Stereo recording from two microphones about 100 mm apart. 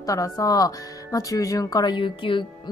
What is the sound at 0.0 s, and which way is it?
Speech, 35° left (ahead or behind).